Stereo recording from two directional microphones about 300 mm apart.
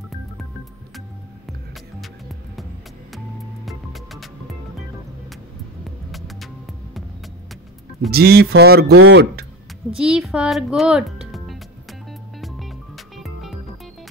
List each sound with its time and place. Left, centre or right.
2.0 s music: centre
3.6 s music: centre
6.1 s music: centre
8.1 s a sound: right
9.0 s speech: right
9.9 s speech: centre
12.4 s music: centre